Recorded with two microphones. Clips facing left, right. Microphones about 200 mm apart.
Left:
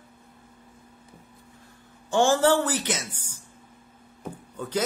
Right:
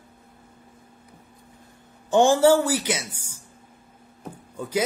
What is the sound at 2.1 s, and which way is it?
A man's voice, 15° right (ahead or behind).